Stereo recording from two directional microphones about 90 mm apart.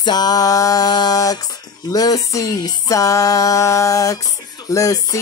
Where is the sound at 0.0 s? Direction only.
50° left (ahead or behind).